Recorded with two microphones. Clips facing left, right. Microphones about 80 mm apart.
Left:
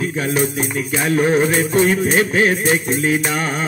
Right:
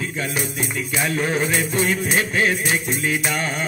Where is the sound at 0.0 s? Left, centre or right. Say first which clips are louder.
Left 7 dB; left.